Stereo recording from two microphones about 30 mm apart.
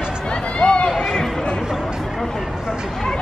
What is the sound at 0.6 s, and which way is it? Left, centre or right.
Run, left.